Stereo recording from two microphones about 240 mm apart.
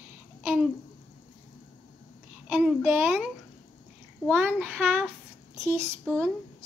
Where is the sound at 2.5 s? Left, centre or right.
Centre.